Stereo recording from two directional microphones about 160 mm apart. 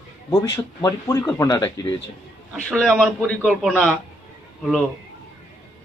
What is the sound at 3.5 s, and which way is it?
Speech, 10° right (ahead or behind).